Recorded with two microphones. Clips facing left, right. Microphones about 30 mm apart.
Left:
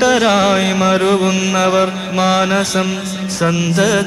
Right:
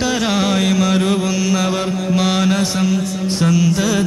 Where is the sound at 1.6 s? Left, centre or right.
Left; by 3.6 s centre.